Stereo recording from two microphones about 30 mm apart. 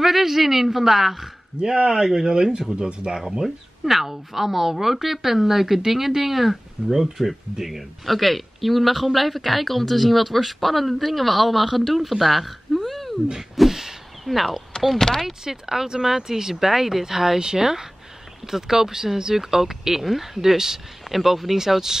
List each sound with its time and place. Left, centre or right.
0.0 s speech: centre
1.6 s speech: right
3.4 s a man's voice: centre
13.6 s a sound: centre
14.2 s a man's voice: centre
15.0 s speech: centre
15.4 s speech: centre
21.1 s speech: centre